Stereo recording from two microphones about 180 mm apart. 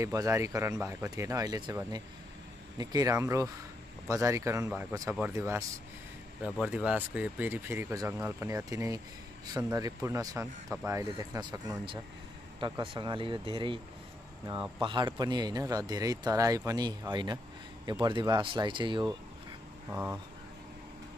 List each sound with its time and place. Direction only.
0.0 s speech: 15° right (ahead or behind)
6.6 s speech: 5° right (ahead or behind); by 13.7 s 30° right (ahead or behind)
14.8 s speech: 25° right (ahead or behind)
19.9 s speech: 10° right (ahead or behind)